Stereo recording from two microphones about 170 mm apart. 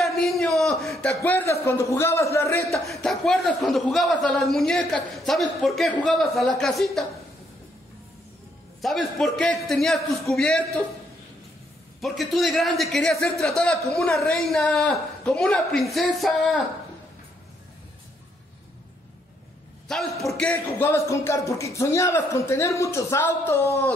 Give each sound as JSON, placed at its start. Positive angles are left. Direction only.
{"t": 0.0, "sound": "a sound", "side_deg": 0}
{"t": 2.9, "sound": "a man's voice", "side_deg": 0}
{"t": 8.8, "sound": "a man's voice", "side_deg": 0}
{"t": 12.0, "sound": "a man's voice", "side_deg": 0}
{"t": 19.9, "sound": "a man's voice", "side_deg": 0}